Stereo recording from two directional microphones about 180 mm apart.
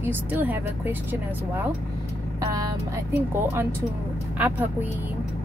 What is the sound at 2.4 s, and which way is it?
Speech, 20° right (ahead or behind).